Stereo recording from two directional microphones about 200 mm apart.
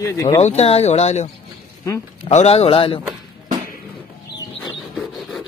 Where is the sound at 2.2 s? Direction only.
30° left (ahead or behind).